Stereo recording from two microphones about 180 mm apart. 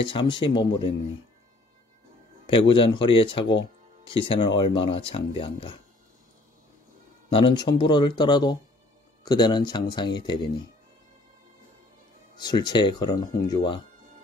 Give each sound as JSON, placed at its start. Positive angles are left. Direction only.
{"t": 0.0, "sound": "speech", "side_deg": 25}
{"t": 2.4, "sound": "speech", "side_deg": 25}
{"t": 7.2, "sound": "speech", "side_deg": 25}
{"t": 12.4, "sound": "speech", "side_deg": 25}